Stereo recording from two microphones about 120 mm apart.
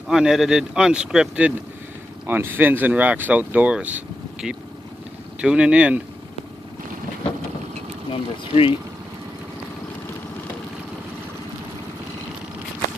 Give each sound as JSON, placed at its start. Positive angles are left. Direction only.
{"t": 0.1, "sound": "speech", "side_deg": -5}
{"t": 8.1, "sound": "speech", "side_deg": 50}